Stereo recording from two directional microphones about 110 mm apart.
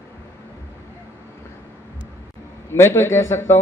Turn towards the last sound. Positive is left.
turn(degrees=25)  # may be behind; listen again after turning